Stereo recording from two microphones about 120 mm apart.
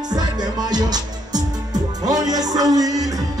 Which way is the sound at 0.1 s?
35° right (ahead or behind).